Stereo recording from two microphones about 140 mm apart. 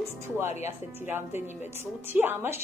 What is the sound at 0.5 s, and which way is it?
Speech, 55° left (ahead or behind).